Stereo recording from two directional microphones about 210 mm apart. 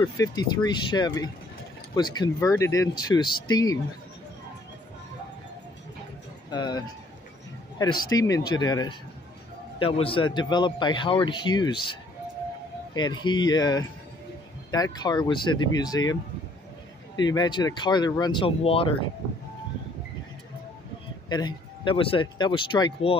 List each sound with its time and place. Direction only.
0.0 s speech: 20° left (ahead or behind)
6.5 s speech: 20° left (ahead or behind)
8.1 s speech: 15° left (ahead or behind)
12.9 s speech: 20° left (ahead or behind)
17.2 s speech: 20° left (ahead or behind)
21.3 s speech: 20° left (ahead or behind)